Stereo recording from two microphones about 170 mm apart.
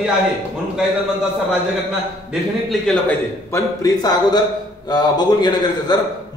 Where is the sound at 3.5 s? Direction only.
20° left (ahead or behind).